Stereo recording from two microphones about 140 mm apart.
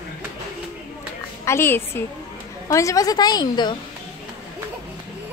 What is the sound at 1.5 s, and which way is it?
A woman's voice, 15° left (ahead or behind).